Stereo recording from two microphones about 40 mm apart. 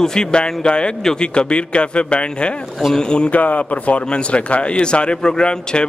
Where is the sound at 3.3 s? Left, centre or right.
Left.